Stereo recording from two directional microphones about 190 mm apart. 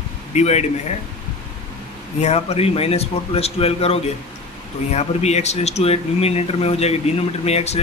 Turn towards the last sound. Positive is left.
turn(degrees=35)  # may be behind; listen again after turning